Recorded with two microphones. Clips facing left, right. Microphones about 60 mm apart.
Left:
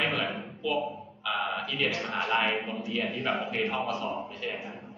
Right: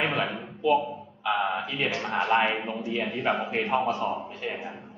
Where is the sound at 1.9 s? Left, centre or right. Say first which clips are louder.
Right 6 dB; centre.